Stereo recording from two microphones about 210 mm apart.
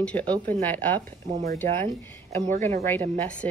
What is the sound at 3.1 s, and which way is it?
Speech, 5° left (ahead or behind).